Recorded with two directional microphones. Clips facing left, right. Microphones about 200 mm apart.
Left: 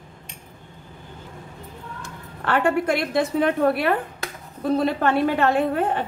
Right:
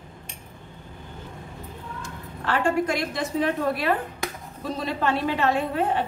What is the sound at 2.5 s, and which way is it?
A woman's voice, 60° left (ahead or behind).